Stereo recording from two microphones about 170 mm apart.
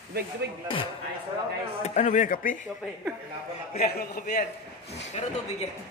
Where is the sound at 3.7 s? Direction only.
65° left (ahead or behind).